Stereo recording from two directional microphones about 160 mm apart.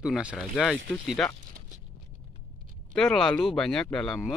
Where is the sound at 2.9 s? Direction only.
5° left (ahead or behind).